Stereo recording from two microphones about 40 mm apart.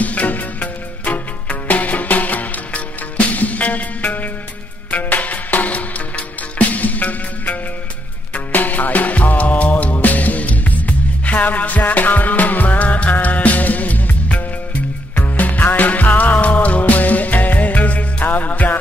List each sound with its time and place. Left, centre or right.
0.0 s music: left